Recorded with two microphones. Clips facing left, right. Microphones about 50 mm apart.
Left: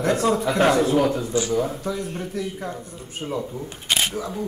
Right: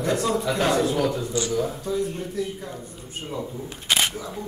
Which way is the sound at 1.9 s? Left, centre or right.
Left.